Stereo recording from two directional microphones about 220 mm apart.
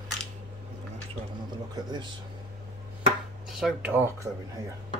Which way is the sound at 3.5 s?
Centre (ahead or behind).